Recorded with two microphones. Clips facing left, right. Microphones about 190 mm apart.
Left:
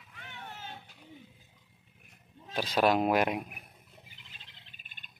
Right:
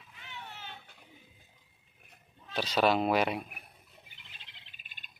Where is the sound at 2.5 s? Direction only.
10° left (ahead or behind).